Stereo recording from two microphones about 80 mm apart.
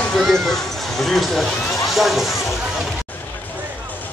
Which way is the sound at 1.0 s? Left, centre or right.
Centre.